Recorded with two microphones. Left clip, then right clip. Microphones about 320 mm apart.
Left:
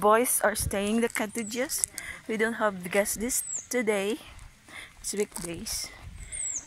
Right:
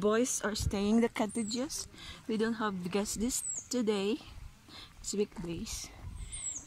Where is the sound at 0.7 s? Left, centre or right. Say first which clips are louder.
Left 3 dB; centre.